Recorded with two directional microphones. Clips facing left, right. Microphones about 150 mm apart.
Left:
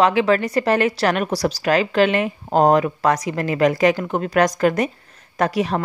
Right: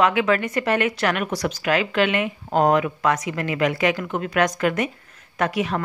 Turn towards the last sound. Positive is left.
turn(degrees=35)  # may be behind; listen again after turning